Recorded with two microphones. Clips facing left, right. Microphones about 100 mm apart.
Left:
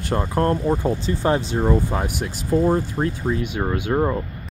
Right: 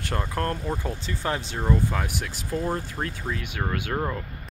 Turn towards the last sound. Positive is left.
turn(degrees=20)  # may be behind; listen again after turning